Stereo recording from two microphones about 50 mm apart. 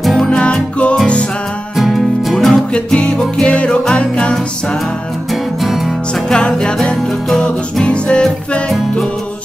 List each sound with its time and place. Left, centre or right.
0.0 s music: centre
0.3 s music: left
1.8 s music: centre
2.5 s music: centre
5.3 s music: centre
6.2 s music: centre